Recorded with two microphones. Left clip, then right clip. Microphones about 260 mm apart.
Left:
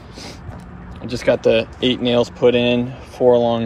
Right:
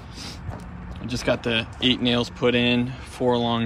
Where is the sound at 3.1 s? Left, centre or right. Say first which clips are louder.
Left 9 dB; right.